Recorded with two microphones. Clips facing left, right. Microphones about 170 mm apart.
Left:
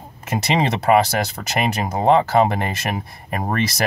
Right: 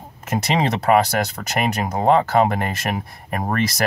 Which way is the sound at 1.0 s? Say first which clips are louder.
Even; 5° left (ahead or behind).